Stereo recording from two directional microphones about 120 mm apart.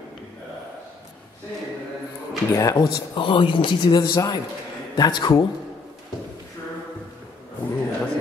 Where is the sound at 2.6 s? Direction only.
30° left (ahead or behind).